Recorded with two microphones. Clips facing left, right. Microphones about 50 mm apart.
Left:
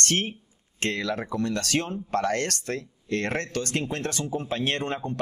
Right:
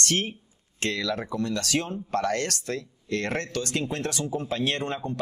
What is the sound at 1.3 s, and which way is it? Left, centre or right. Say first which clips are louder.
Speech: left 2 dB; left.